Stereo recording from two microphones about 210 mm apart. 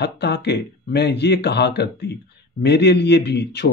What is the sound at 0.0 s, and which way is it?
Speech, 50° left (ahead or behind).